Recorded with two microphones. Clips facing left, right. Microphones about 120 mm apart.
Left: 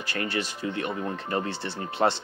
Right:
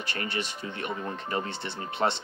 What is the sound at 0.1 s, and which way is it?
Speech, 40° left (ahead or behind).